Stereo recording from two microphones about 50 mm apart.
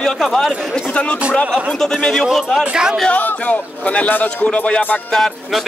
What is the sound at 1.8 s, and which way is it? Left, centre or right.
Speech, centre.